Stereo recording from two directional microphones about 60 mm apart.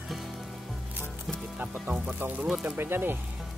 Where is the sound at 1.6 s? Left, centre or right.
Right.